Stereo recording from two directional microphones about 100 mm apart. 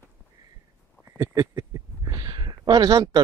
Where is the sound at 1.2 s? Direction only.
35° right (ahead or behind).